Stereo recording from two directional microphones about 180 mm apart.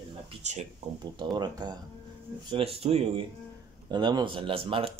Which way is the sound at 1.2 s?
25° right (ahead or behind).